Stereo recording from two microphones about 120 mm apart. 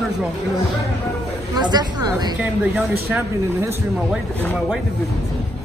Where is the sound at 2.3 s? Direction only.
10° right (ahead or behind).